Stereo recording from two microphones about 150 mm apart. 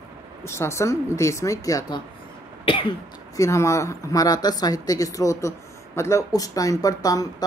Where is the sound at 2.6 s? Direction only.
35° left (ahead or behind).